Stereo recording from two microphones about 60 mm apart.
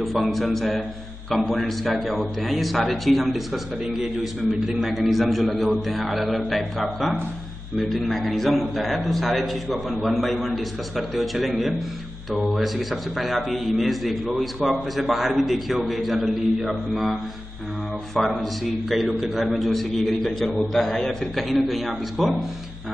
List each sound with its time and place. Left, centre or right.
0.0 s a man's voice: centre
16.6 s mantra: centre
18.1 s a man's voice: centre